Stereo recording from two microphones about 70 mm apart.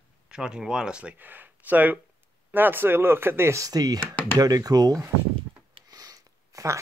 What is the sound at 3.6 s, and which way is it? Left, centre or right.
Speech, right.